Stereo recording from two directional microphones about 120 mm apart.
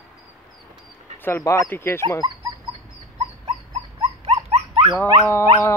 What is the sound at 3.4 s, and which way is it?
Dog, 65° right (ahead or behind).